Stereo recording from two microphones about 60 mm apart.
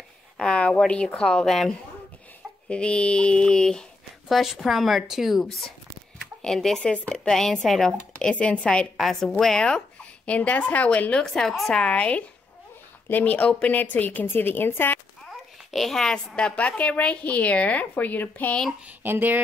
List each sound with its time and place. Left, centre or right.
0.4 s a sound: centre
0.8 s a woman's voice: centre
2.7 s speech: centre
4.3 s a woman's voice: centre
6.4 s speech: centre
8.3 s a child's voice: centre
8.9 s a woman's voice: centre
10.2 s a child's voice: left
11.2 s a woman's voice: centre
11.7 s a child's voice: left
15.2 s a child's voice: centre; by 18.6 s left
18.9 s speech: right